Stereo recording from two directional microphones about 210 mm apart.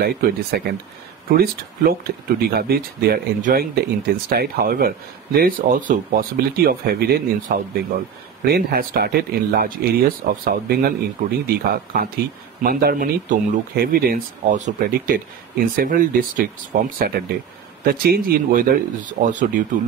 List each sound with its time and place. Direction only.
0.0 s speech: 45° right (ahead or behind)